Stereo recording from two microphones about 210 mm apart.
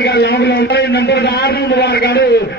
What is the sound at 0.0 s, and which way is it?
A man's voice, 50° left (ahead or behind).